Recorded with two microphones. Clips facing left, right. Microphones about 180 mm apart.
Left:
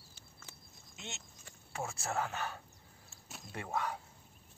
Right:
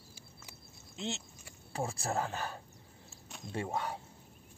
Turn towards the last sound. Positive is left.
turn(degrees=-30)  # may be behind; listen again after turning